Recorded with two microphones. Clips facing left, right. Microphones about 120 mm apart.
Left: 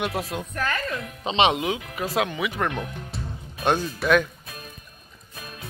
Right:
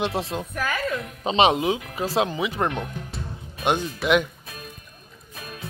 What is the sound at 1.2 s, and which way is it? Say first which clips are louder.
Speech: right 2 dB; 35° right (ahead or behind).